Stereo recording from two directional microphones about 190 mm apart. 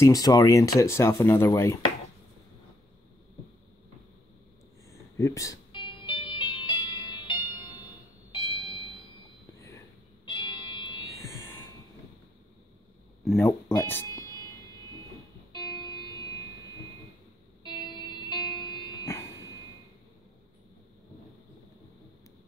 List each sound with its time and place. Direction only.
0.0 s speech: 20° left (ahead or behind)
5.1 s music: 15° left (ahead or behind)
10.2 s music: 25° left (ahead or behind)
13.2 s speech: centre (ahead or behind)
13.5 s speech: 10° left (ahead or behind)
15.5 s music: 20° left (ahead or behind)
17.6 s music: 25° left (ahead or behind)